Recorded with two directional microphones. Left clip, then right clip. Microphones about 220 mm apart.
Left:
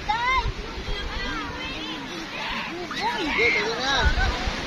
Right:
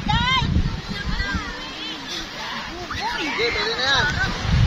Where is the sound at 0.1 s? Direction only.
5° left (ahead or behind).